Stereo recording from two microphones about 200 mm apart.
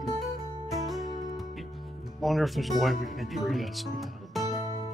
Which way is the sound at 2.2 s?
Centre (ahead or behind).